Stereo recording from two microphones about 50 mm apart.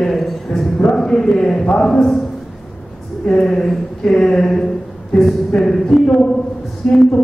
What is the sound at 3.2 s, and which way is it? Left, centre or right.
A man's voice, centre.